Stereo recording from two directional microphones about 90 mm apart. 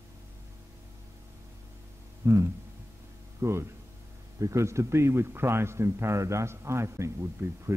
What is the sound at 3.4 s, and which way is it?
A man's voice, 30° right (ahead or behind).